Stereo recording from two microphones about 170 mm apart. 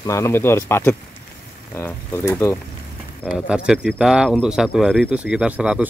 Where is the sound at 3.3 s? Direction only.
5° right (ahead or behind).